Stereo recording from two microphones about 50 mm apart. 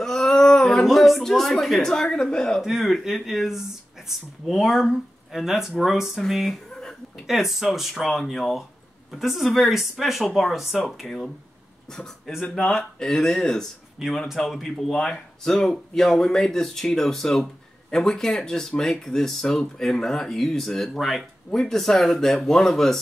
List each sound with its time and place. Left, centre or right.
0.0 s a sound: centre
0.8 s speech: centre
2.6 s speech: centre
6.7 s a sound: centre
7.2 s speech: centre
12.7 s speech: centre
14.0 s speech: centre
14.4 s speech: centre